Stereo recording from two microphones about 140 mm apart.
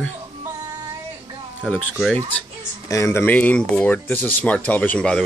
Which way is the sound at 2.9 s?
20° left (ahead or behind).